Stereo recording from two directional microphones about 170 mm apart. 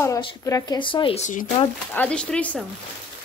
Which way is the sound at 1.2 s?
50° left (ahead or behind).